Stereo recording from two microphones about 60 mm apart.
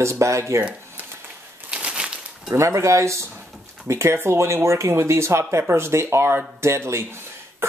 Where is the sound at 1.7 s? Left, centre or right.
Centre.